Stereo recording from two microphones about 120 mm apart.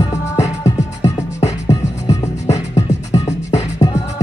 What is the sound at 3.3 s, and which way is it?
Music, 65° left (ahead or behind).